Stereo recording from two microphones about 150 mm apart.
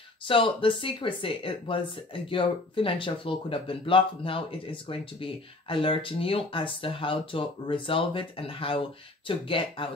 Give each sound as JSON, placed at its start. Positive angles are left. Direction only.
{"t": 0.3, "sound": "speech", "side_deg": 35}